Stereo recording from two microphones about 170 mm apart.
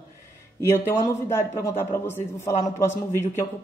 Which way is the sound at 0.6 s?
15° left (ahead or behind).